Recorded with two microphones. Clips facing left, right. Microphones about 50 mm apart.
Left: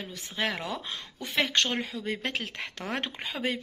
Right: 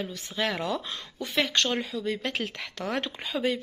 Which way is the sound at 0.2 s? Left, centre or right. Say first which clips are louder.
Right 1 dB; left.